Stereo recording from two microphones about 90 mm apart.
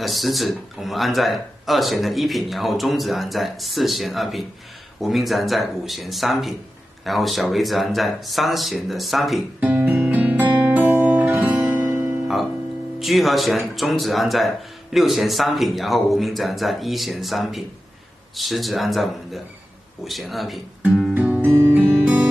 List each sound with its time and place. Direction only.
0.0 s speech: centre (ahead or behind)
9.6 s guitar: 20° right (ahead or behind)
10.5 s music: 20° right (ahead or behind)
13.0 s speech: centre (ahead or behind)
21.1 s guitar: 20° right (ahead or behind)
21.7 s music: 15° right (ahead or behind)